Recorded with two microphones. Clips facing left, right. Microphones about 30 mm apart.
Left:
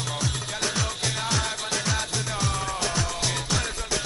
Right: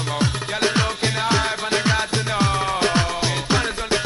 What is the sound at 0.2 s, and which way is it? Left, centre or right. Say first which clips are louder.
Music: right 10 dB; right.